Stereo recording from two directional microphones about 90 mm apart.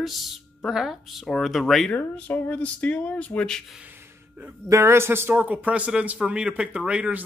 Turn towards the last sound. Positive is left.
turn(degrees=-15)  # may be behind; listen again after turning